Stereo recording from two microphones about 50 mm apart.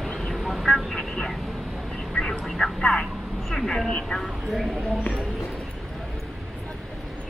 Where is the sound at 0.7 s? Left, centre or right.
Centre.